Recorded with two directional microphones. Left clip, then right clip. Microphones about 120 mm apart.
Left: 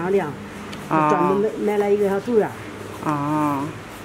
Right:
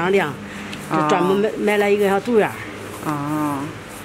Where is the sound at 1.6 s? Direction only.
45° right (ahead or behind).